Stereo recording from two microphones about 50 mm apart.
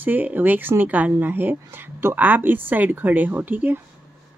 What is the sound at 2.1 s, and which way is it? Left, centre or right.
Speech, right.